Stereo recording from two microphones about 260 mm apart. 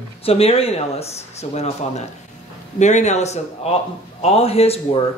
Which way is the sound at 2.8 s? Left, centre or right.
Left.